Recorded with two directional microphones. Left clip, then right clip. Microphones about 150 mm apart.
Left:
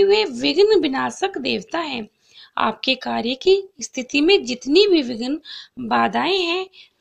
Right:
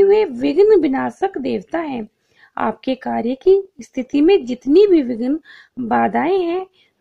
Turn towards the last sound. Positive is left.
turn(degrees=-40)  # may be behind; listen again after turning